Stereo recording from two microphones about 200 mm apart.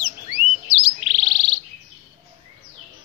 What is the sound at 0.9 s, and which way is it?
Bird, 30° left (ahead or behind).